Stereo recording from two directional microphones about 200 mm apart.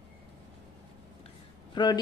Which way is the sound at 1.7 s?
20° left (ahead or behind).